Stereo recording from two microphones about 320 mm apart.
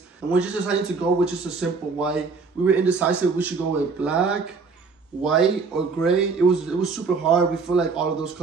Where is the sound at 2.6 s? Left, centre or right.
Centre.